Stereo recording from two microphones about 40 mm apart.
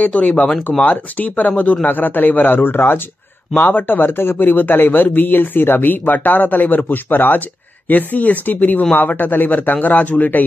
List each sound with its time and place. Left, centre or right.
0.0 s speech: left
3.5 s speech: left
7.9 s speech: left